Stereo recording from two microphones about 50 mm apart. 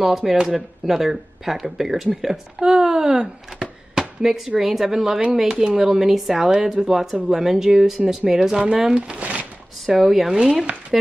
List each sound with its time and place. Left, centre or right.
0.0 s a woman's voice: centre
3.9 s a sound: centre
4.6 s a woman's voice: centre; by 9.5 s right
9.8 s a woman's voice: centre
10.3 s speech: centre